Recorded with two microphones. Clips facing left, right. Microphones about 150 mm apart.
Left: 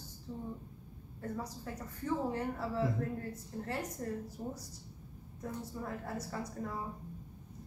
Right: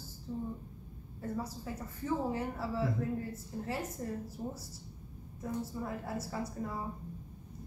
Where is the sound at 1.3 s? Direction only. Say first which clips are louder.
Right 3 dB; 10° right (ahead or behind).